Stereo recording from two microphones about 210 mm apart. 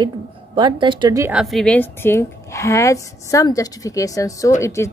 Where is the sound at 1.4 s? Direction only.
Centre (ahead or behind).